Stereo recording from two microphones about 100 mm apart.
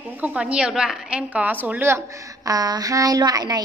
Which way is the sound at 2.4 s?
40° right (ahead or behind).